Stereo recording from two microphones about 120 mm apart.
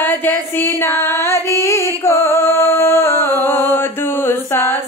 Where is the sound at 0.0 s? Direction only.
15° left (ahead or behind).